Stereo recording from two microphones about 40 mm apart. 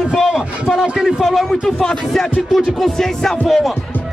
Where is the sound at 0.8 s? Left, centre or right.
Centre.